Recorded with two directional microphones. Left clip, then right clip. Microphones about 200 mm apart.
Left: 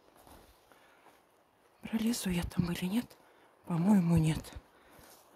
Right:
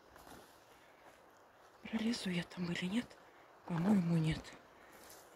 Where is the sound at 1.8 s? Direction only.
40° left (ahead or behind).